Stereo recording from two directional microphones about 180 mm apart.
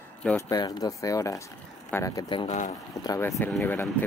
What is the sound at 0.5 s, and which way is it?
Speech, 20° left (ahead or behind).